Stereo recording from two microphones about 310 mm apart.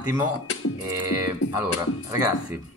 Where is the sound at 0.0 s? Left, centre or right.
Centre.